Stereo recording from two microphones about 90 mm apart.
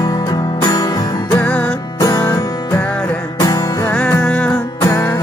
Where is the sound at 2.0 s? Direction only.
35° left (ahead or behind).